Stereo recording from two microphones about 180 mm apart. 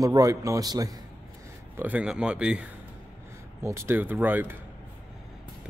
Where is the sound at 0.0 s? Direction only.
20° right (ahead or behind).